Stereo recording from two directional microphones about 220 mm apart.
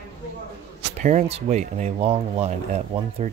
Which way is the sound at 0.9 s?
35° right (ahead or behind).